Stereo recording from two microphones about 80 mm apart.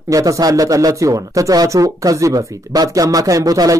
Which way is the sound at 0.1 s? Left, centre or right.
Right.